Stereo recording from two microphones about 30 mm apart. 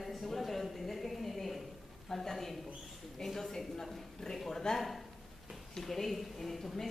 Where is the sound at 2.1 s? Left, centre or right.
Centre.